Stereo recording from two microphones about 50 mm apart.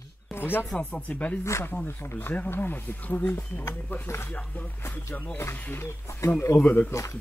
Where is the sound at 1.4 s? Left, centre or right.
Left.